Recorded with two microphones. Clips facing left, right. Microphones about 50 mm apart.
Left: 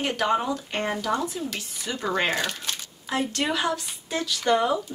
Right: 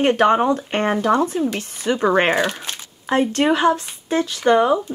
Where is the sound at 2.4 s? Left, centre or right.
Right.